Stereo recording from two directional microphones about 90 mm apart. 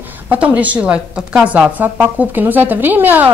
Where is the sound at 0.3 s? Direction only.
15° right (ahead or behind).